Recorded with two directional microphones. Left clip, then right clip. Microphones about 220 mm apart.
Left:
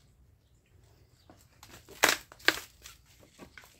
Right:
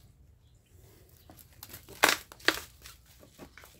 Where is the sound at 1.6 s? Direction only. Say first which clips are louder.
Right 2 dB; 35° right (ahead or behind).